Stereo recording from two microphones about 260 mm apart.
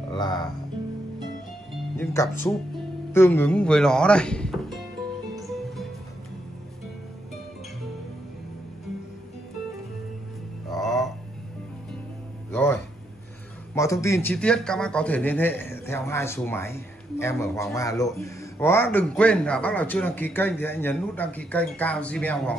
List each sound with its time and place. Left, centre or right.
0.1 s speech: centre
2.0 s a man's voice: centre
10.7 s music: centre
12.4 s music: centre
14.0 s a man's voice: centre